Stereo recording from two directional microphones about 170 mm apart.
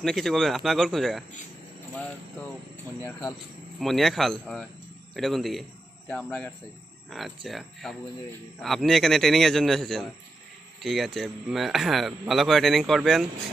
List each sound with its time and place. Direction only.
0.0 s speech: centre (ahead or behind)
3.1 s speech: 20° left (ahead or behind)
3.8 s speech: centre (ahead or behind)